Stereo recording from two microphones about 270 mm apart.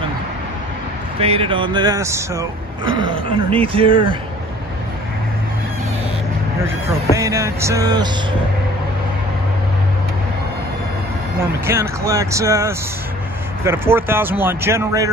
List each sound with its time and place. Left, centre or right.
1.2 s speech: right
7.2 s speech: centre
11.6 s speech: centre